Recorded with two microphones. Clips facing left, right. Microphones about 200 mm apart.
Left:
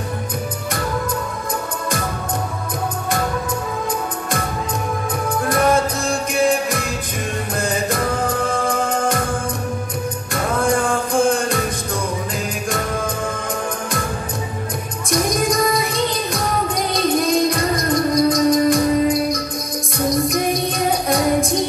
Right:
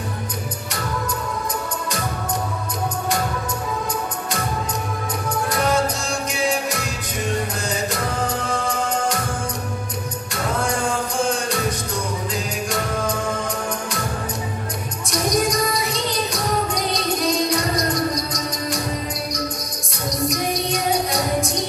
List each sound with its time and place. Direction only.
5.3 s music: 55° left (ahead or behind)
7.9 s music: 55° left (ahead or behind)
10.3 s music: 55° left (ahead or behind)
15.0 s music: 50° left (ahead or behind)